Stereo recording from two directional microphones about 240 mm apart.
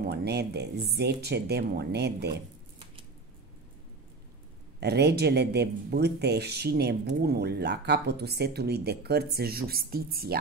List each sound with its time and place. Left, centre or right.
0.0 s speech: right
4.7 s speech: right